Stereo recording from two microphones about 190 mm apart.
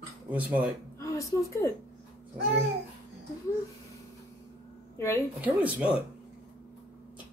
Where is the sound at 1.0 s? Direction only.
15° left (ahead or behind).